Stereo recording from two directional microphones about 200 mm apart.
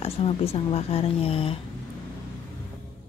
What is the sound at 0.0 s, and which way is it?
A woman's voice, 30° left (ahead or behind).